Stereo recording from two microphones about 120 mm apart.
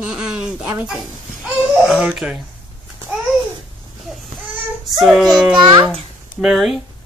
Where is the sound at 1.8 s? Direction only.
5° right (ahead or behind).